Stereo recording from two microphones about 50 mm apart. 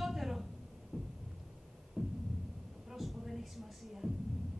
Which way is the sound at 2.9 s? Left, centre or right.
Centre.